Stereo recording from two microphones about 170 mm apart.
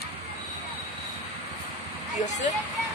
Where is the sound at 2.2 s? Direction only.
45° left (ahead or behind).